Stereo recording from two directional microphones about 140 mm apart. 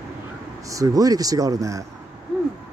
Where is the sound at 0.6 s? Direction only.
25° right (ahead or behind).